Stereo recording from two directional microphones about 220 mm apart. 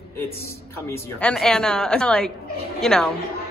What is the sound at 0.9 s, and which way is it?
A woman's voice, 5° left (ahead or behind).